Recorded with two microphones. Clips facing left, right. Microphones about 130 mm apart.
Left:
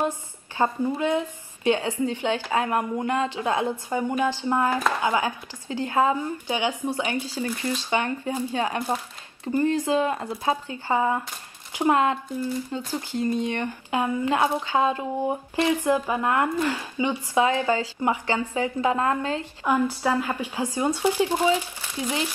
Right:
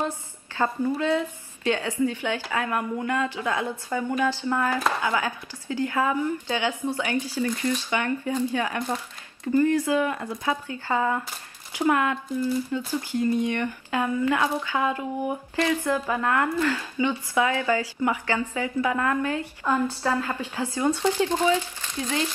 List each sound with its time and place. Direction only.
0.6 s a woman's voice: 15° left (ahead or behind)